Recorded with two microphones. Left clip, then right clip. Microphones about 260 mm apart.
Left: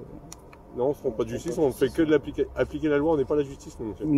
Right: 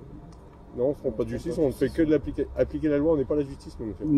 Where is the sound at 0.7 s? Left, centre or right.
Centre.